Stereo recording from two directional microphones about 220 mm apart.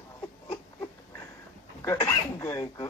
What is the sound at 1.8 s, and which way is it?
Speech, 15° left (ahead or behind).